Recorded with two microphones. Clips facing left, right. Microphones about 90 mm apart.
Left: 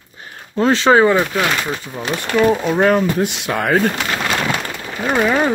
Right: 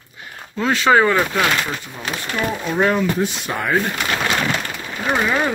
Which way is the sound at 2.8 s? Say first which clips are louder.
Left 1 dB; 50° left (ahead or behind).